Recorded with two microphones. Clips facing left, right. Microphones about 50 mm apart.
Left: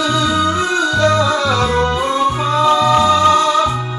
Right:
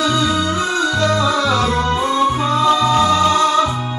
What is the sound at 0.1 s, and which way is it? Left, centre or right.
Music, left.